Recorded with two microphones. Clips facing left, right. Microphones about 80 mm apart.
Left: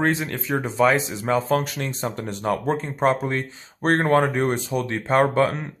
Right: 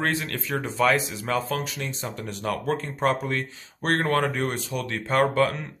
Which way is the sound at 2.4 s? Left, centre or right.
Left.